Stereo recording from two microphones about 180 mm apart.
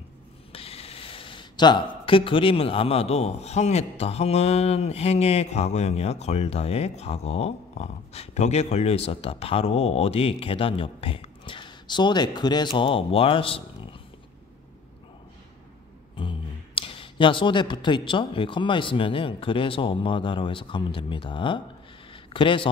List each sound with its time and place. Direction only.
0.5 s speech: 30° left (ahead or behind)
16.2 s speech: 30° left (ahead or behind)
22.1 s a sound: 30° left (ahead or behind)